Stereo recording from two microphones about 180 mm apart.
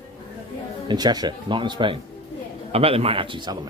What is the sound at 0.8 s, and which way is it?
Speech, 25° right (ahead or behind).